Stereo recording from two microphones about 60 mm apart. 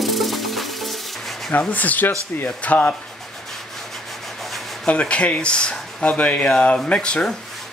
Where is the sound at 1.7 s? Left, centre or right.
Left.